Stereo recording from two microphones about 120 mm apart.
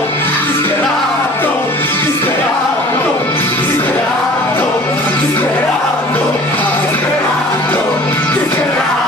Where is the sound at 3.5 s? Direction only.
20° left (ahead or behind).